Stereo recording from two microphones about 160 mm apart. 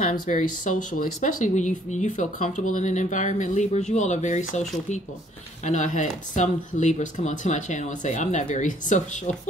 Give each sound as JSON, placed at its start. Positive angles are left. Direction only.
{"t": 0.0, "sound": "speech", "side_deg": 55}